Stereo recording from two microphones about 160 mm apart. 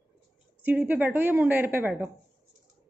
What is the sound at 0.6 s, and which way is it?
A woman's voice, 10° right (ahead or behind).